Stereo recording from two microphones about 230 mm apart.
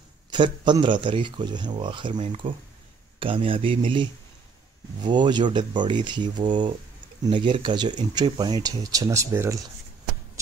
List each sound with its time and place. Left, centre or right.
0.3 s speech: centre